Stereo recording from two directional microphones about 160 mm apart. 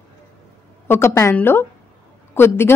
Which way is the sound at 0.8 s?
15° left (ahead or behind).